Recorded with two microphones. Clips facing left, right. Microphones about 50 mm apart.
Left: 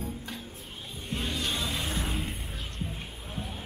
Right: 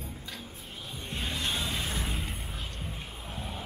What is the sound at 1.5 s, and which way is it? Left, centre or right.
Music, centre.